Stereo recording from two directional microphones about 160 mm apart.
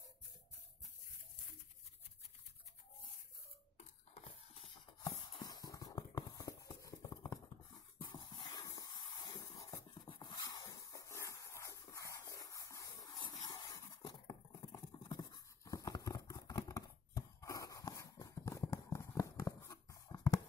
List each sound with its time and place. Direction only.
3.7 s a sound: 40° left (ahead or behind)
5.0 s clip-clop: 25° left (ahead or behind)
10.0 s dog: 30° left (ahead or behind)